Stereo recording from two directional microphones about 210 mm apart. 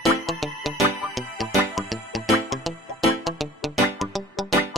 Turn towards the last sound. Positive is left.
turn(degrees=0)  # may be behind; listen again after turning